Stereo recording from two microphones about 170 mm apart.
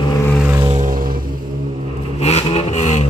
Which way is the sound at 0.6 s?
45° right (ahead or behind).